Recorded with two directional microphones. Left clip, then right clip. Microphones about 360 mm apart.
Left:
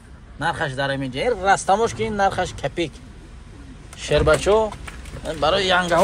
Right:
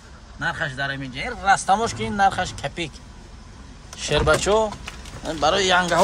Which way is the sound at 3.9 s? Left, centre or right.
Centre.